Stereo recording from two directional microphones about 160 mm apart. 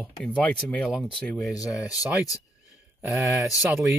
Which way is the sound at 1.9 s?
20° left (ahead or behind).